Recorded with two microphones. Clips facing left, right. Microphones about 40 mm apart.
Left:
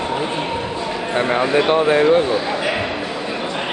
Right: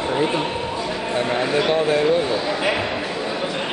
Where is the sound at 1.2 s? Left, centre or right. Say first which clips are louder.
Left 4 dB; left.